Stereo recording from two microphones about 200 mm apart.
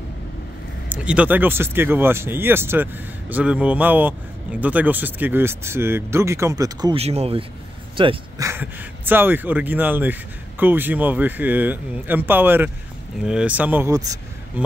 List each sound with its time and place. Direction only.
0.8 s speech: 5° right (ahead or behind); by 8.5 s 25° right (ahead or behind)
8.5 s speech: 10° right (ahead or behind)